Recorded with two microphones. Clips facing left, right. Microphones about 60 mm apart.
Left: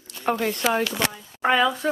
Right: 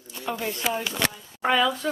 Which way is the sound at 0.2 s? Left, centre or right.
Left.